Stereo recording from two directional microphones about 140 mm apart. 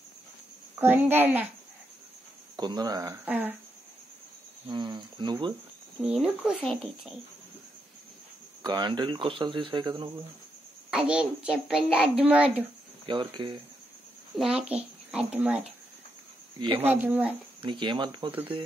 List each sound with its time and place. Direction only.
0.7 s a child's voice: 15° right (ahead or behind)
2.5 s speech: 30° right (ahead or behind)
3.3 s a child's voice: 10° right (ahead or behind)
4.6 s speech: 35° right (ahead or behind)
6.0 s speech: 5° right (ahead or behind)
8.6 s speech: 30° right (ahead or behind)
10.9 s a child's voice: 5° right (ahead or behind)
13.0 s speech: 35° right (ahead or behind)
14.3 s a child's voice: centre (ahead or behind)
16.5 s speech: 35° right (ahead or behind)
16.8 s a child's voice: 15° right (ahead or behind)
17.6 s speech: 35° right (ahead or behind)